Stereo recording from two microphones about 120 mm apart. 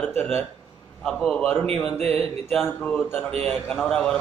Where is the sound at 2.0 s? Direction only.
55° right (ahead or behind).